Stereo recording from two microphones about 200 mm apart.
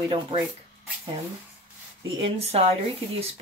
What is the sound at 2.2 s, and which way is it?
Speech, 30° right (ahead or behind).